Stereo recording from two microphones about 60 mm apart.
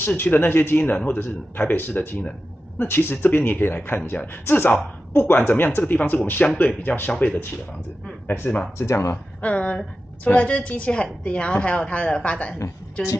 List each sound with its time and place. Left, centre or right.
0.0 s a woman's voice: left
7.1 s a woman's voice: left
8.3 s speech: left
8.7 s speech: left
9.4 s a woman's voice: left